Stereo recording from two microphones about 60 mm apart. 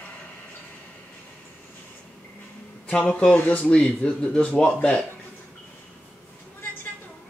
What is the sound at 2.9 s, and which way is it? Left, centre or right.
Speech, centre.